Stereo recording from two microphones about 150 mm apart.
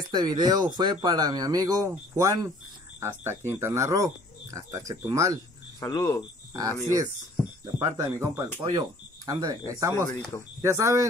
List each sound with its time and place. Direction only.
0.1 s speech: 30° right (ahead or behind)
5.8 s speech: 20° left (ahead or behind)
6.5 s speech: 25° right (ahead or behind)